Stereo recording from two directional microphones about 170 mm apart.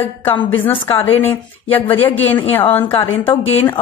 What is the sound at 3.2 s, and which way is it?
Speech, 35° left (ahead or behind).